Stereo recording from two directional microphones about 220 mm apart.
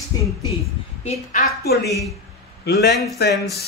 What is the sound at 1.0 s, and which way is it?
Speech, 30° left (ahead or behind).